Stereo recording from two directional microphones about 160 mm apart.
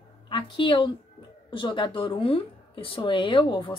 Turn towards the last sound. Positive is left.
turn(degrees=30)  # may be behind; listen again after turning